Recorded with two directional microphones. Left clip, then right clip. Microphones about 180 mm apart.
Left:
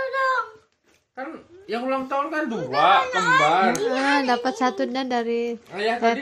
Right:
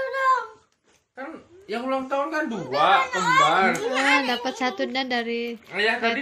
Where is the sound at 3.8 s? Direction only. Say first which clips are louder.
Even; 5° right (ahead or behind).